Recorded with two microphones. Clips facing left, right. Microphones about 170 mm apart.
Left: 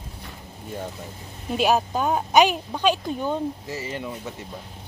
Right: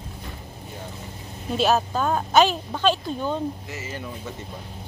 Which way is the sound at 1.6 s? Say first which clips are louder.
Even; 15° left (ahead or behind).